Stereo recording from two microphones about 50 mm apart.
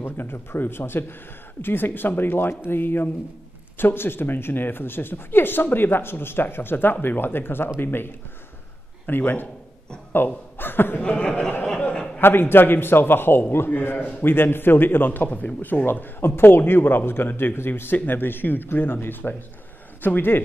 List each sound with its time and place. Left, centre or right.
0.0 s a man's voice: left
10.1 s a sound: left
11.0 s speech: left
12.2 s speech: left